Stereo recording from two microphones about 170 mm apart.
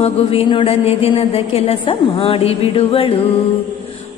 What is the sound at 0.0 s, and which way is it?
Music, 35° left (ahead or behind).